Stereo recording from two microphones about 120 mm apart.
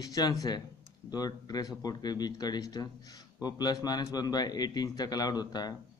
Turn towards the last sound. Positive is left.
turn(degrees=35)  # may be behind; listen again after turning